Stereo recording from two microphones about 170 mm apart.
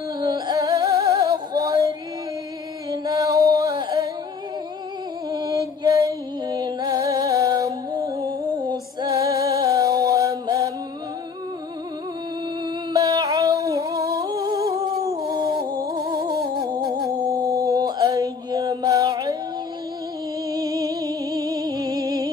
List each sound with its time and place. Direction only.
0.2 s female singing: 25° right (ahead or behind)
2.9 s music: 20° right (ahead or behind)
5.3 s music: 20° right (ahead or behind)
12.6 s a sound: 20° right (ahead or behind)
13.9 s singing: 65° right (ahead or behind)
14.2 s singing: 20° right (ahead or behind)
15.6 s music: 25° right (ahead or behind)
16.5 s humming: 25° right (ahead or behind)
17.3 s mantra: 20° right (ahead or behind)
20.4 s music: 20° right (ahead or behind)